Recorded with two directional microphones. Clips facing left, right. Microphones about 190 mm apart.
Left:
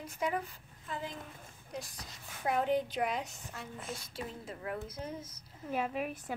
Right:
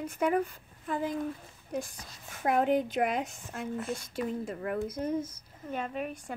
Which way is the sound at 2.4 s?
55° right (ahead or behind).